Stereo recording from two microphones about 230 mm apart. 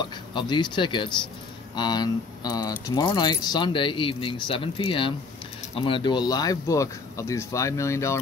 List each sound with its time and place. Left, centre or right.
0.0 s speech: centre